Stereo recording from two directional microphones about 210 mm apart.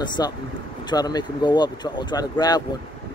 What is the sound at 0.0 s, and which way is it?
Speech, 20° left (ahead or behind).